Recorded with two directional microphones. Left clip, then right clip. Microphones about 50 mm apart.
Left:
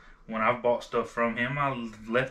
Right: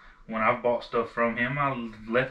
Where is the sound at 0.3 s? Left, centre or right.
Left.